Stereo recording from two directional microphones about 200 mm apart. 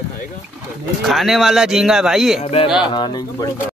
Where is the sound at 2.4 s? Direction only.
30° left (ahead or behind).